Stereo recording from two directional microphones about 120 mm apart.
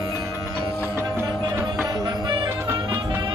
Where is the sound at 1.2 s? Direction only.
20° right (ahead or behind).